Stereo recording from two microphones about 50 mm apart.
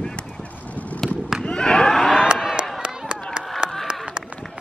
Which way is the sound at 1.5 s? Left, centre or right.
Centre.